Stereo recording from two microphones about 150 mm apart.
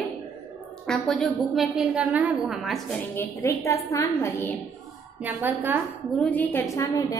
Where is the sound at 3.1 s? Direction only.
15° left (ahead or behind).